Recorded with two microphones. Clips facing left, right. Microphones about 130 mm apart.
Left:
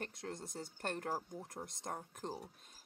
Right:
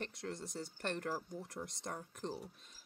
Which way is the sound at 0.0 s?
50° left (ahead or behind).